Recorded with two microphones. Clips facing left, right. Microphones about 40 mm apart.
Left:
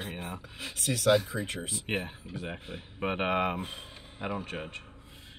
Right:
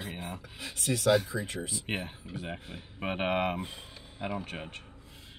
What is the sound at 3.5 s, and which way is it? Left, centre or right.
Speech, left.